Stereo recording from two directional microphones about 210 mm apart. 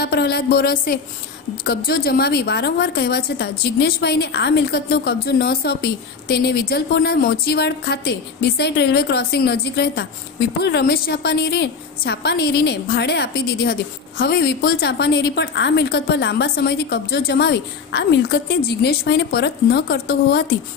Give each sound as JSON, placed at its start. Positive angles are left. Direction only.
{"t": 0.0, "sound": "a woman's voice", "side_deg": 50}